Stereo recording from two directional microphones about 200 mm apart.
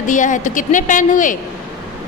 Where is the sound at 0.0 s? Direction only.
40° left (ahead or behind).